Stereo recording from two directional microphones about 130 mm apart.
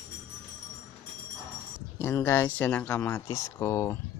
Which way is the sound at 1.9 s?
20° left (ahead or behind).